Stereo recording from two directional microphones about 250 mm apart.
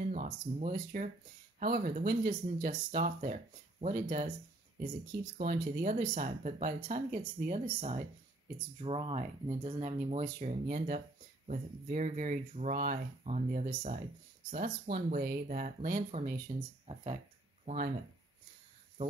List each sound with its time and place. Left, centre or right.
0.0 s speech: right
5.4 s speech: right
17.6 s speech: right